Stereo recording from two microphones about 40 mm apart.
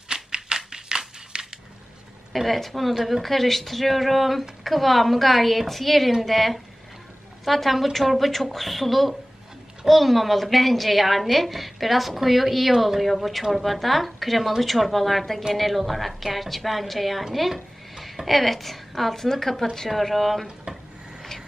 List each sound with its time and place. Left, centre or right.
0.1 s typewriter: centre
2.3 s a woman's voice: centre
20.7 s dishes: right